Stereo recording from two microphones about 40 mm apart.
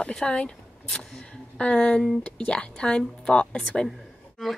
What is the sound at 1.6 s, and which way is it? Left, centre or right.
Speech, left.